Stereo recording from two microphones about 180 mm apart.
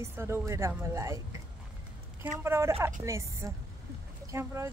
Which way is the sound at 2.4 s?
15° right (ahead or behind).